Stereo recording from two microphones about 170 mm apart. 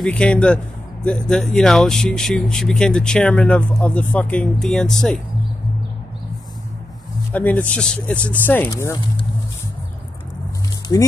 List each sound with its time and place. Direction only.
0.0 s speech: 5° left (ahead or behind)
7.3 s speech: 10° left (ahead or behind)
10.9 s speech: 15° left (ahead or behind)